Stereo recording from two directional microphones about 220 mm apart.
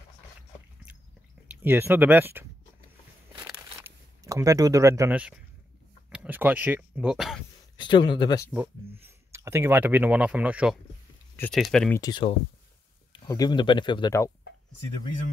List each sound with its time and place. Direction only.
1.6 s speech: 10° right (ahead or behind)
3.4 s a sound: 10° right (ahead or behind)
6.1 s speech: 5° right (ahead or behind)
7.7 s speech: 20° left (ahead or behind)
8.5 s speech: 10° right (ahead or behind)
11.3 s speech: 5° left (ahead or behind)
12.0 s speech: 20° left (ahead or behind)